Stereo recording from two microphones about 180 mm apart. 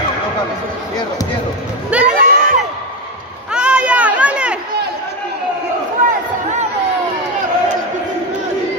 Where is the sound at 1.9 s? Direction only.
5° right (ahead or behind).